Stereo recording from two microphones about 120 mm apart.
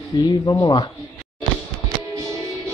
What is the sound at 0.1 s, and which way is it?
Speech, 40° left (ahead or behind).